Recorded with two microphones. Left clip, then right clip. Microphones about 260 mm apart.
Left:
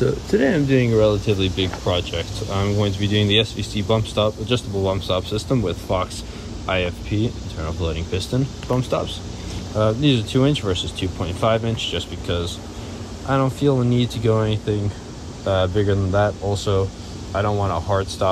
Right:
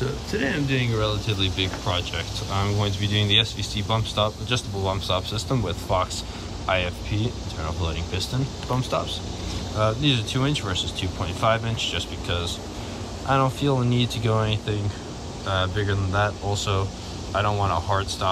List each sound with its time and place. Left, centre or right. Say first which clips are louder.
0.0 s speech: left 8 dB; centre